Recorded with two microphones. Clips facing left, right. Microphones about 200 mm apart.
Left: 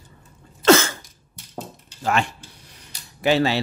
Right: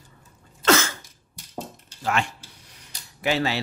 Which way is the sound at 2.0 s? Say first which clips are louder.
Left 3 dB; 35° left (ahead or behind).